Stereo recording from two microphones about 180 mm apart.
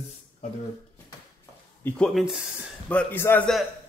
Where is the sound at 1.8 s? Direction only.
Centre (ahead or behind).